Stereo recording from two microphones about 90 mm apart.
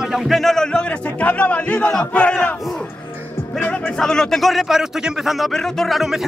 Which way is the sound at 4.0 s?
5° left (ahead or behind).